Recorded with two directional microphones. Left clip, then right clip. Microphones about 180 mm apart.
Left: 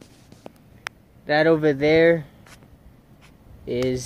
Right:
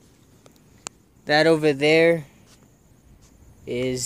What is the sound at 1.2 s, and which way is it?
Speech, 55° right (ahead or behind).